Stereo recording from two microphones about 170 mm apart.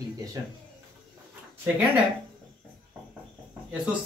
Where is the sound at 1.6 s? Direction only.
10° right (ahead or behind).